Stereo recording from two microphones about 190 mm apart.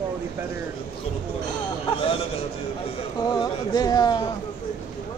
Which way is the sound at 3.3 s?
20° left (ahead or behind).